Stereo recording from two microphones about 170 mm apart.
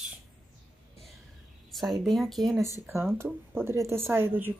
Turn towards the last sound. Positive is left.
turn(degrees=-10)  # may be behind; listen again after turning